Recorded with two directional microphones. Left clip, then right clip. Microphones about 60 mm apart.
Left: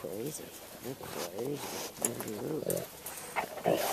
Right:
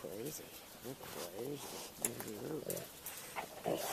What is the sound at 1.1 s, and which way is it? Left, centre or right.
Speech, centre.